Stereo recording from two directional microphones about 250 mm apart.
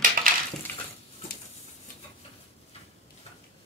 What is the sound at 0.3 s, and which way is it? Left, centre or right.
Crushing, right.